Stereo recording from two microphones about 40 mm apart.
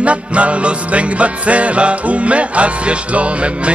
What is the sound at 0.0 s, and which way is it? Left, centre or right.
Music, right.